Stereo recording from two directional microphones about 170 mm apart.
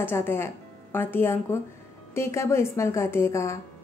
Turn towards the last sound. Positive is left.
turn(degrees=15)  # may be behind; listen again after turning